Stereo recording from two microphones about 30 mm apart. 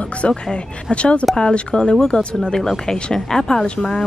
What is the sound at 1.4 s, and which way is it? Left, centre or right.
A woman's voice, left.